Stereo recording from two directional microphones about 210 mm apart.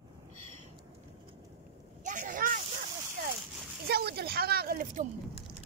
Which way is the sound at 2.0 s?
40° right (ahead or behind).